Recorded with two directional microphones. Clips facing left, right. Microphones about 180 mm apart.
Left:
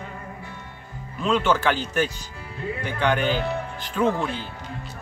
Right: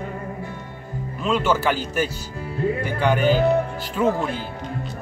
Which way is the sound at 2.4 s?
45° right (ahead or behind).